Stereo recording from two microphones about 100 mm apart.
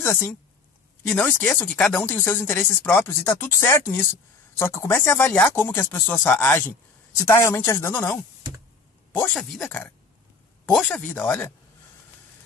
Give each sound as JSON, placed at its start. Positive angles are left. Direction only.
{"t": 0.0, "sound": "speech", "side_deg": 25}
{"t": 9.3, "sound": "speech", "side_deg": 5}
{"t": 9.6, "sound": "speech", "side_deg": 15}
{"t": 11.1, "sound": "speech", "side_deg": 20}